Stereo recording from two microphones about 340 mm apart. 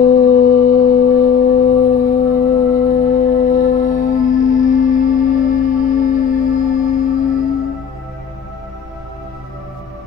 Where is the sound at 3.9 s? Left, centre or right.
Left.